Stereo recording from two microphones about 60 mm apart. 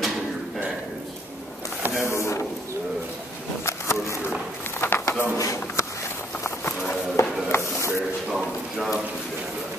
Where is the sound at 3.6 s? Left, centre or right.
Left.